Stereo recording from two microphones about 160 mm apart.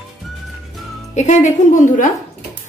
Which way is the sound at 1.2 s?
45° left (ahead or behind).